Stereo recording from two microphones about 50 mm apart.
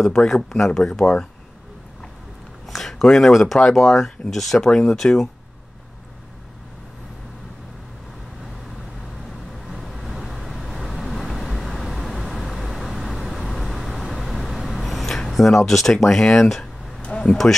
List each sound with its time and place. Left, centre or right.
0.0 s speech: centre
2.6 s speech: centre
9.7 s vehicle: centre
17.0 s a sound: left